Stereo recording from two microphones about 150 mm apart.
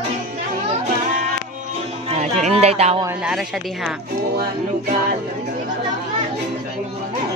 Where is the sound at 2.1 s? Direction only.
50° right (ahead or behind).